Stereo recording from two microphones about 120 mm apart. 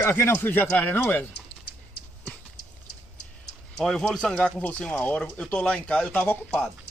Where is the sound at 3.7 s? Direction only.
5° left (ahead or behind).